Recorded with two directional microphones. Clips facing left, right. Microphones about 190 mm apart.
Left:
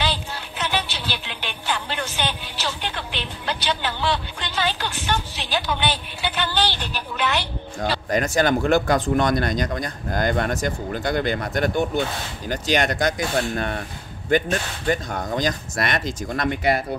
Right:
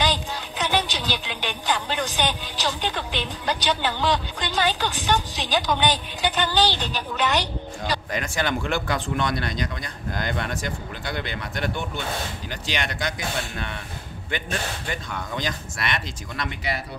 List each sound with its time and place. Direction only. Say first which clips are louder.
0.0 s speech: right 2 dB; 15° right (ahead or behind)
7.8 s speech: left 6 dB; 40° left (ahead or behind)